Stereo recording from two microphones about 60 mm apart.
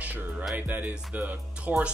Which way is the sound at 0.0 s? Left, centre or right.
Right.